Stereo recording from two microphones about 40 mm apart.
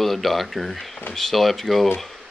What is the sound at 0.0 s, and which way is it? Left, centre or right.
Speech, centre.